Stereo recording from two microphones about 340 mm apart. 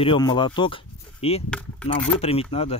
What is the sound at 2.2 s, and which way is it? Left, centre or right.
Speech, centre.